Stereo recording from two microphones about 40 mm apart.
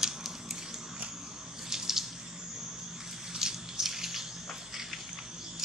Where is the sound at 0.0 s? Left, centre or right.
Centre.